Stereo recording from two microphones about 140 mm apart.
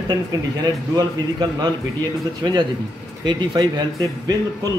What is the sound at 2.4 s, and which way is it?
A man's voice, 30° right (ahead or behind).